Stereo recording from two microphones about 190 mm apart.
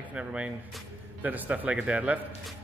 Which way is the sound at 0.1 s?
5° right (ahead or behind).